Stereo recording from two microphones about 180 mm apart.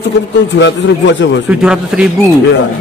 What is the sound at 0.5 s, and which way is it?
Speech, 80° left.